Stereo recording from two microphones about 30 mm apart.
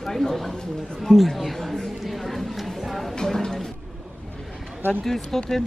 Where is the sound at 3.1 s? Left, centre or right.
Left.